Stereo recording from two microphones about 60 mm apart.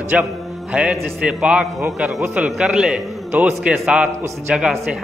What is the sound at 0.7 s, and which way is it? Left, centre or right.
A man's voice, centre.